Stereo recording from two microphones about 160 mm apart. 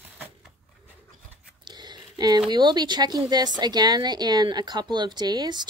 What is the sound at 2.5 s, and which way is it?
Speech, 25° right (ahead or behind).